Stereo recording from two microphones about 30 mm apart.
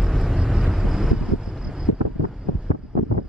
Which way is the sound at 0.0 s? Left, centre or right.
Centre.